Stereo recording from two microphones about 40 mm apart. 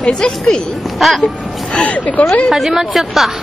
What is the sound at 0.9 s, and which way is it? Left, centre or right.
Speech, centre.